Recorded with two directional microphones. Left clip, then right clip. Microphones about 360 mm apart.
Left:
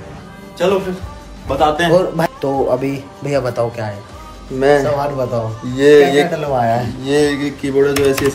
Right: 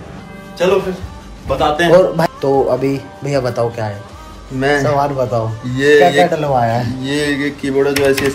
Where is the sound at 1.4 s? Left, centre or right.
Centre.